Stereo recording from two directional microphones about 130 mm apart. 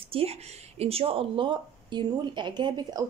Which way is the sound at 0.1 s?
50° right (ahead or behind).